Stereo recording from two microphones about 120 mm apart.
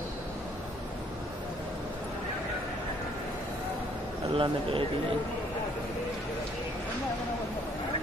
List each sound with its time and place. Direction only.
4.3 s a man's voice: 50° right (ahead or behind)